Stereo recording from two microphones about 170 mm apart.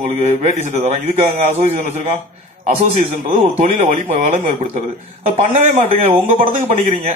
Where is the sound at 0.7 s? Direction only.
45° right (ahead or behind).